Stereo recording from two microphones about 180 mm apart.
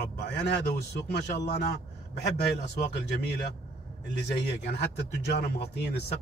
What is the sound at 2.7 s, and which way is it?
A man's voice, 70° left (ahead or behind).